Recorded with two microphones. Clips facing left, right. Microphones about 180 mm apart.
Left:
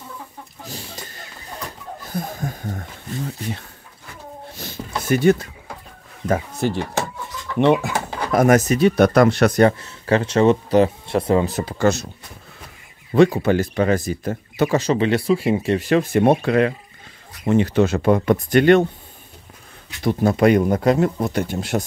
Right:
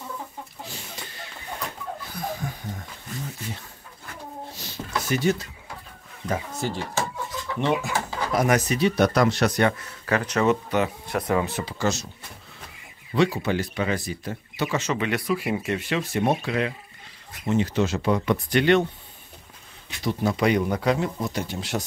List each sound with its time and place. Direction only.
0.7 s a sound: 40° left (ahead or behind)
2.0 s a sound: 45° left (ahead or behind)
4.6 s a sound: 55° left (ahead or behind)
6.2 s speech: 55° left (ahead or behind)
9.6 s speech: 30° left (ahead or behind)
11.8 s speech: 55° left (ahead or behind)
13.1 s speech: 50° left (ahead or behind)
14.8 s speech: 30° left (ahead or behind)
15.9 s speech: 50° left (ahead or behind)
20.0 s speech: 55° left (ahead or behind)